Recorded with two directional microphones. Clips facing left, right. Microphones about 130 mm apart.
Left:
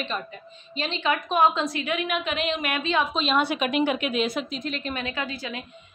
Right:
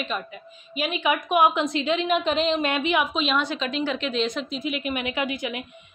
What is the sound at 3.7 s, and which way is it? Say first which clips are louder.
Speech: left 3 dB; 55° left (ahead or behind).